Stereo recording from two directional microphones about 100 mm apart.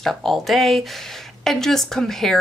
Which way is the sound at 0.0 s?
Centre (ahead or behind).